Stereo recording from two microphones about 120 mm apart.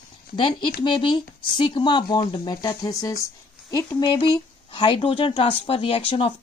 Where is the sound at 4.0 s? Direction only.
40° left (ahead or behind).